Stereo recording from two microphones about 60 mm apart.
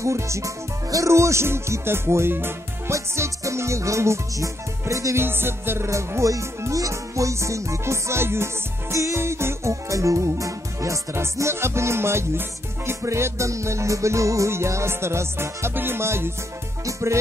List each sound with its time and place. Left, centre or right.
0.0 s music: right
2.9 s music: right
5.2 s music: right
5.9 s music: right
11.3 s music: right